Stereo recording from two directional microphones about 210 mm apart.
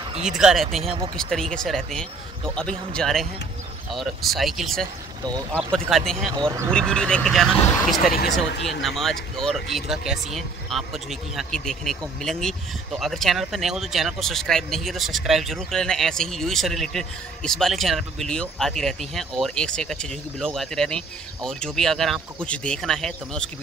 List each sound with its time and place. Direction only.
0.4 s speech: 5° right (ahead or behind)
5.2 s speech: 15° right (ahead or behind)
5.9 s speech: centre (ahead or behind)
6.3 s speech: 20° right (ahead or behind)
6.7 s speech: 5° left (ahead or behind)